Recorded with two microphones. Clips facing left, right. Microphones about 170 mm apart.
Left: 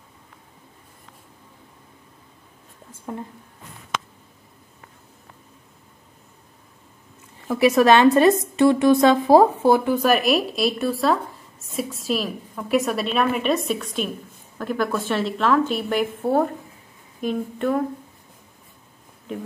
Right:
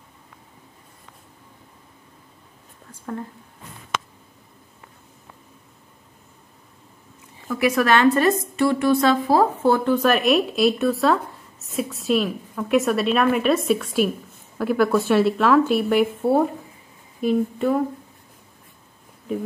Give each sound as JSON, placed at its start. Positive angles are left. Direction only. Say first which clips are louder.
{"t": 2.9, "sound": "speech", "louder": "right 1 dB", "side_deg": 15}
{"t": 7.6, "sound": "a woman's voice", "louder": "left 3 dB", "side_deg": 20}